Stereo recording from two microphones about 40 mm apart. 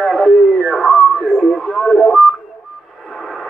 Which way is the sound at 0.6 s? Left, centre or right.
Centre.